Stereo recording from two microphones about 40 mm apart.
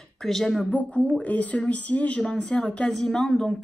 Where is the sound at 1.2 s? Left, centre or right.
Left.